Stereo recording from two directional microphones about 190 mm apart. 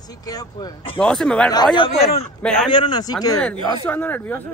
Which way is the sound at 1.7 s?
30° left (ahead or behind).